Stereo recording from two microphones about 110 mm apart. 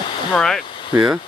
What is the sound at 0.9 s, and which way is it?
Speech, 10° right (ahead or behind).